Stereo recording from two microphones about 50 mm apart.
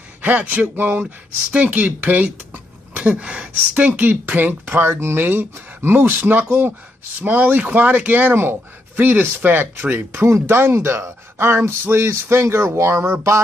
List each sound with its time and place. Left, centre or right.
0.2 s speech: right
3.2 s speech: right
5.2 s speech: right
7.2 s speech: right
10.2 s speech: right